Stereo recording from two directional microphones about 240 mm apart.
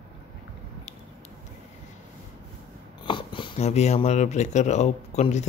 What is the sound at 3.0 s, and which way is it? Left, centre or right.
Speech, centre.